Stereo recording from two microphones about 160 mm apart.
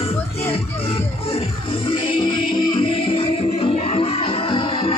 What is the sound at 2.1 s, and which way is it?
Music, 30° left (ahead or behind).